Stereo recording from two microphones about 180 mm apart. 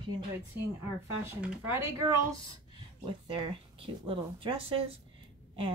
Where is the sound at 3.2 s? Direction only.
30° right (ahead or behind).